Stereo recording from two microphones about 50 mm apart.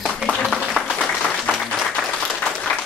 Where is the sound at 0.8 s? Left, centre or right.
Right.